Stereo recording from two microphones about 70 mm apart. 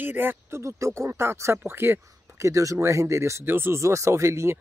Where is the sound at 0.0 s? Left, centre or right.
Right.